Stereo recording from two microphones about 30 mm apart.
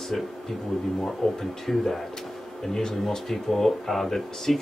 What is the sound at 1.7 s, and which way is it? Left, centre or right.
A man's voice, centre.